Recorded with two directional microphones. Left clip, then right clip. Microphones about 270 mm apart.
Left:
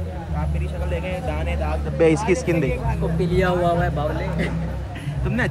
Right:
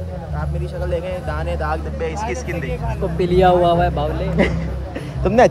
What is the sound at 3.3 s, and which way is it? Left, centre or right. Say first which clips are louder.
Speech: right 7 dB; centre.